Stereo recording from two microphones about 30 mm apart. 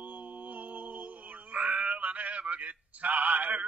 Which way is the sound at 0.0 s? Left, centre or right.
Right.